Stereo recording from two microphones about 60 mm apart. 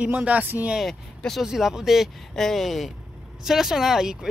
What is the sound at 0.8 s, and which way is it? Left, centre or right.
Speech, centre.